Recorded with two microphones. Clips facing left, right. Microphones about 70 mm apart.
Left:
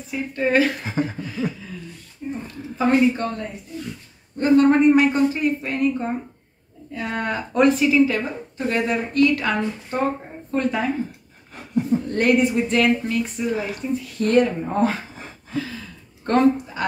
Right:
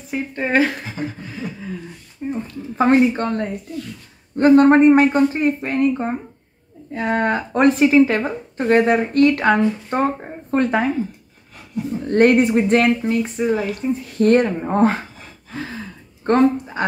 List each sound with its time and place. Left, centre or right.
0.4 s speech: right
1.0 s a sound: centre
1.4 s speech: right
2.2 s a sound: right
2.8 s speech: right
12.1 s speech: right
13.1 s speech: right
15.5 s a sound: right
16.3 s speech: right